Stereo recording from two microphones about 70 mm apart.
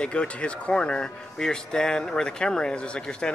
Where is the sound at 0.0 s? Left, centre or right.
Centre.